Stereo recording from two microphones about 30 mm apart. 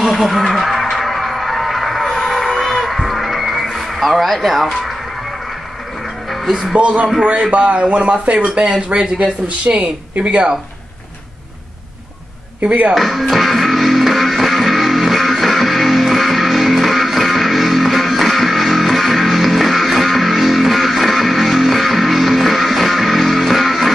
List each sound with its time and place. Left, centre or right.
0.1 s music: centre
3.7 s speech: centre
6.4 s speech: centre
6.8 s speech: right
9.7 s speech: right
12.9 s speech: centre
13.3 s music: centre